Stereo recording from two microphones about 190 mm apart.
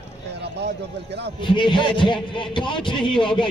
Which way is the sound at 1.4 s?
25° left (ahead or behind).